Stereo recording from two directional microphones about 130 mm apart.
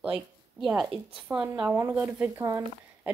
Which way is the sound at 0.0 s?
5° right (ahead or behind).